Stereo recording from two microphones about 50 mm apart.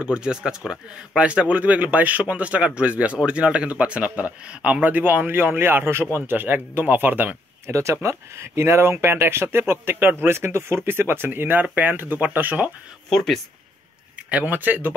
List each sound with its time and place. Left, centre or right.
0.0 s a man's voice: centre
4.8 s speech: right
6.3 s speech: right
7.6 s speech: right
13.1 s speech: centre
14.1 s speech: right